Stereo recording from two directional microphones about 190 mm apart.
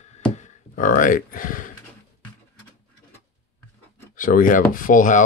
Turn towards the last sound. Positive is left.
turn(degrees=45)  # may be behind; listen again after turning